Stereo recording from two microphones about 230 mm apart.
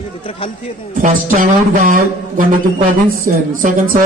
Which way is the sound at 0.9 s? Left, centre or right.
Right.